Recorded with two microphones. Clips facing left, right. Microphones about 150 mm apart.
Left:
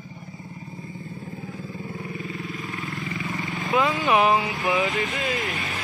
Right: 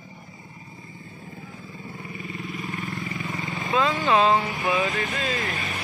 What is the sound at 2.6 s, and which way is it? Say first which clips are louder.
Vehicle: even; 20° right (ahead or behind).